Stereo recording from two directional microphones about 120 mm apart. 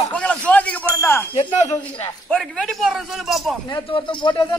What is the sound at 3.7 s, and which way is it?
Speech, 40° left (ahead or behind).